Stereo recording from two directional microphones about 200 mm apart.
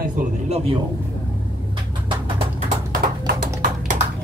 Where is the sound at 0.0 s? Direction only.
40° right (ahead or behind).